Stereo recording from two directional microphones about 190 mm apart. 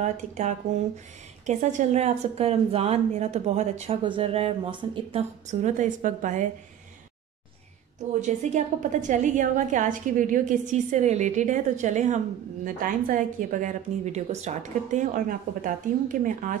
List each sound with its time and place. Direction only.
0.0 s a woman's voice: 40° right (ahead or behind)
8.1 s a woman's voice: 40° right (ahead or behind)